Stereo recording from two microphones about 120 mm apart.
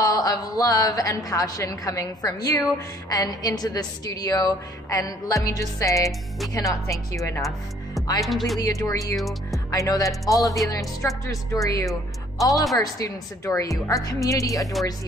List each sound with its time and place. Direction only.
0.0 s a woman's voice: 30° left (ahead or behind)
8.3 s speech: centre (ahead or behind)
8.5 s a woman's voice: 30° left (ahead or behind)
9.1 s speech: centre (ahead or behind)
9.7 s a woman's voice: 30° left (ahead or behind)